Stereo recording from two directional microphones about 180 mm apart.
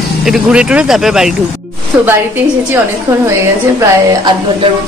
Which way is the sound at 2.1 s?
15° right (ahead or behind).